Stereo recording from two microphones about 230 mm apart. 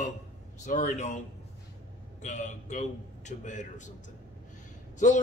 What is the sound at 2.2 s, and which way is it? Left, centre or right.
Speech, left.